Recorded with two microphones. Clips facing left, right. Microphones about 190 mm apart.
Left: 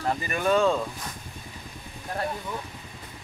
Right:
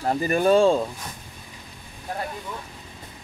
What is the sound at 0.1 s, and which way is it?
Speech, 35° right (ahead or behind).